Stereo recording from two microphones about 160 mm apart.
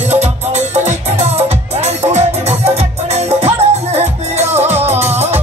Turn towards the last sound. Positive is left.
turn(degrees=-40)  # may be behind; listen again after turning